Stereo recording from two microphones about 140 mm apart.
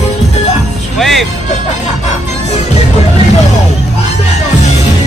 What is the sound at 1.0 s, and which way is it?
Music, centre (ahead or behind).